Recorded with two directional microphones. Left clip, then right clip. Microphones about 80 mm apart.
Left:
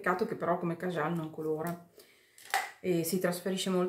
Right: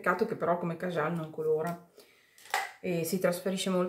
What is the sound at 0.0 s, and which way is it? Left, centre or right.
Speech, centre.